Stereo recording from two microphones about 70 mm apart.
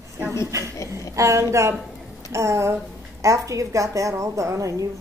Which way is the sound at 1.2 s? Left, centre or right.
Right.